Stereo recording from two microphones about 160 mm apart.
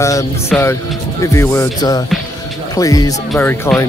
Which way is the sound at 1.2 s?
15° left (ahead or behind).